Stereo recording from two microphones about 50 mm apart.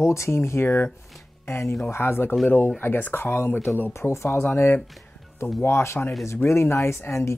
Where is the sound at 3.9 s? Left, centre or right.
Left.